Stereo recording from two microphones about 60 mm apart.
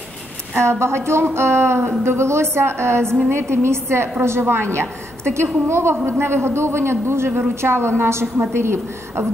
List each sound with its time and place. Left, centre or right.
0.6 s a woman's voice: right